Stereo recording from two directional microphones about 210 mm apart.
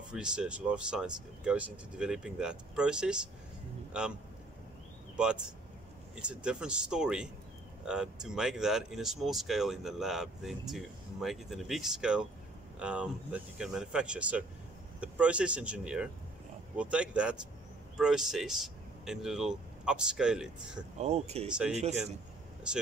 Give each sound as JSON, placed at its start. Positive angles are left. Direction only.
{"t": 0.1, "sound": "speech", "side_deg": -5}
{"t": 5.1, "sound": "speech", "side_deg": -5}
{"t": 21.0, "sound": "speech", "side_deg": -30}